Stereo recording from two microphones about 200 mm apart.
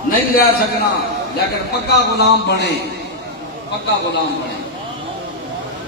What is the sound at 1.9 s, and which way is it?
Speech, 55° left (ahead or behind).